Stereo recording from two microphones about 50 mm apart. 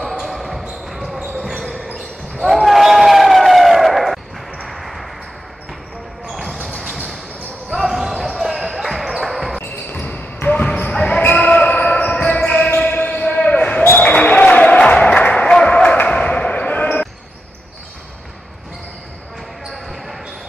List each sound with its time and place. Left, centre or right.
0.0 s basketball bounce: centre
2.4 s a sound: centre
4.6 s ping: centre
6.3 s basketball bounce: centre
7.7 s basketball bounce: centre
9.6 s basketball bounce: left
13.9 s a sound: left
16.0 s basketball bounce: left
19.7 s basketball bounce: centre